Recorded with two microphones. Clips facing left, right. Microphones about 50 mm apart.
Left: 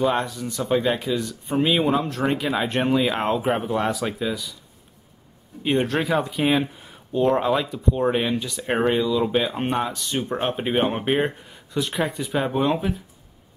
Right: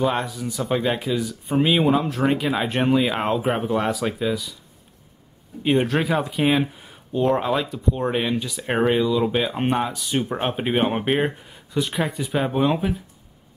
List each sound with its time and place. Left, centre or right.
0.0 s speech: centre
5.6 s speech: centre